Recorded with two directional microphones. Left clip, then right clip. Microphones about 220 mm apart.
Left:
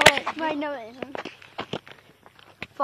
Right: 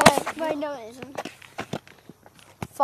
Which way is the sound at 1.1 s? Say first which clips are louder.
Right 3 dB; 55° right (ahead or behind).